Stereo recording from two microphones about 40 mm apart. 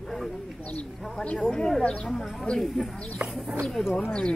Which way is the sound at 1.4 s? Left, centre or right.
Centre.